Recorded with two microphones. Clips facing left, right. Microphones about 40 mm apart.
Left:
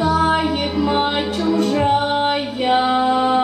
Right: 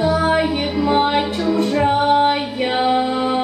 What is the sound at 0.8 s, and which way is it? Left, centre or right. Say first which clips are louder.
Music: right 3 dB; centre.